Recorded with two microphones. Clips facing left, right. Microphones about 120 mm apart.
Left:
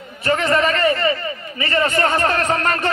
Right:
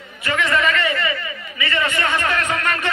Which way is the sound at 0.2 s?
35° left (ahead or behind).